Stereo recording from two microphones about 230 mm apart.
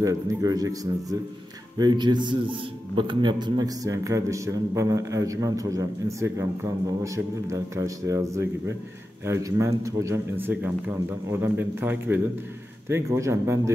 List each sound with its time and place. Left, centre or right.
0.0 s a man's voice: centre
1.8 s a man's voice: centre